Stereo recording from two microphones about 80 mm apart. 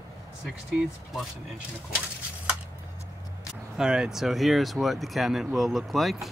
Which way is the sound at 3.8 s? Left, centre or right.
Centre.